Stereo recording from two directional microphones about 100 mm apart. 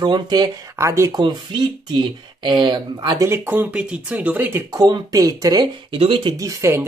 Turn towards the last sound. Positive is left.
turn(degrees=-30)  # may be behind; listen again after turning